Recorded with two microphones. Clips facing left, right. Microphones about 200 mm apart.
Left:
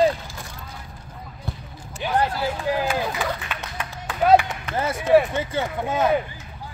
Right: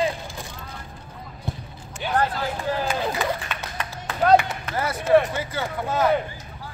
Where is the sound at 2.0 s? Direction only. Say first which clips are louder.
Left 1 dB; 15° left (ahead or behind).